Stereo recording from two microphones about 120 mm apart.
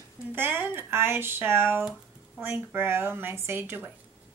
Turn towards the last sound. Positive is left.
turn(degrees=-20)  # may be behind; listen again after turning